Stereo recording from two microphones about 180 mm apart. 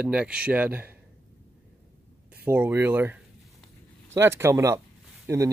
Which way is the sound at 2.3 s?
10° right (ahead or behind).